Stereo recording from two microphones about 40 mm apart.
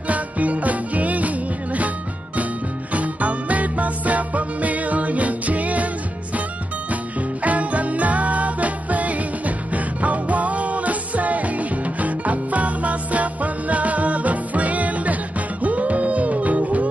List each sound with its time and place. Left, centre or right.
0.1 s music: right
2.9 s music: right
6.9 s music: right